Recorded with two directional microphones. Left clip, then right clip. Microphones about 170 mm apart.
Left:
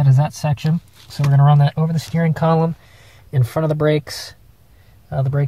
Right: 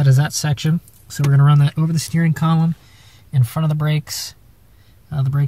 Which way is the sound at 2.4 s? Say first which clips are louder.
Left 5 dB; 40° left (ahead or behind).